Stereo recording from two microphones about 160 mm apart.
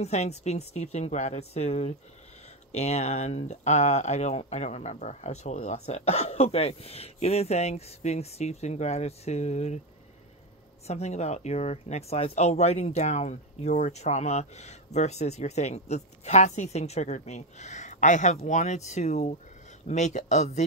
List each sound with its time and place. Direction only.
0.0 s speech: 45° left (ahead or behind)
10.9 s speech: 45° left (ahead or behind)